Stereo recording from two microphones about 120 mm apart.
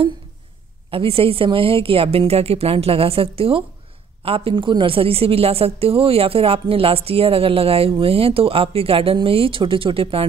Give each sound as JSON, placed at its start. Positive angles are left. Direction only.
{"t": 0.8, "sound": "a woman's voice", "side_deg": -50}